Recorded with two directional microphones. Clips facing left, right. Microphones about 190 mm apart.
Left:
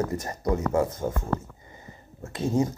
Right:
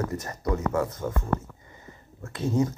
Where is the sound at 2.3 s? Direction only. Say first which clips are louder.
Left 1 dB; 25° left (ahead or behind).